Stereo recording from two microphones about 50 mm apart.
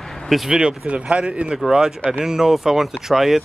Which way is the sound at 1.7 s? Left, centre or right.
Centre.